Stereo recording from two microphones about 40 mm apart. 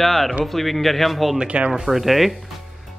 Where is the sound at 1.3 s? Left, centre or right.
Right.